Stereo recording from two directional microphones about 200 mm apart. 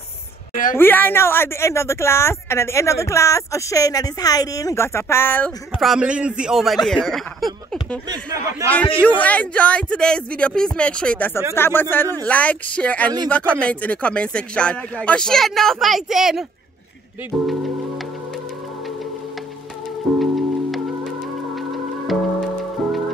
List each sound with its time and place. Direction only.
0.7 s speech: 10° left (ahead or behind)
8.1 s speech: 20° right (ahead or behind)
9.0 s speech: 5° left (ahead or behind)
20.2 s music: centre (ahead or behind)